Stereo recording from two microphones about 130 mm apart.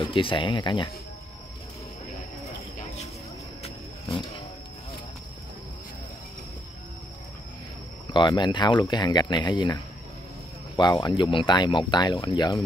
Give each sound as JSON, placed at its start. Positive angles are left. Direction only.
{"t": 0.0, "sound": "speech", "side_deg": 40}
{"t": 8.1, "sound": "speech", "side_deg": 35}
{"t": 10.8, "sound": "speech", "side_deg": 30}